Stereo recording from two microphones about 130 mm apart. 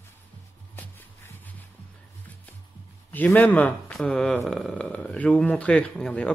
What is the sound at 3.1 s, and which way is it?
Speech, 15° left (ahead or behind).